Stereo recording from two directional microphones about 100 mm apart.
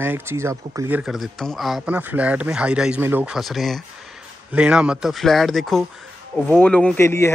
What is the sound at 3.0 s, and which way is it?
Speech, 20° right (ahead or behind).